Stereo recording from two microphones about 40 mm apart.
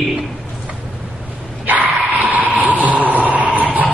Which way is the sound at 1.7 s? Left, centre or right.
Right.